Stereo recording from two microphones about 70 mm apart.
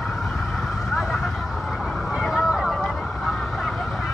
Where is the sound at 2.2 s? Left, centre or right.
Centre.